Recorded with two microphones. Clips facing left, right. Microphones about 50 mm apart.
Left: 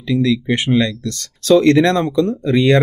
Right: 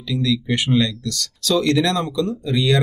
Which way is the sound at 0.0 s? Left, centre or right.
Left.